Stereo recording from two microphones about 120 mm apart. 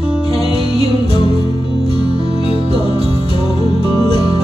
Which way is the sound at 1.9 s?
55° right (ahead or behind).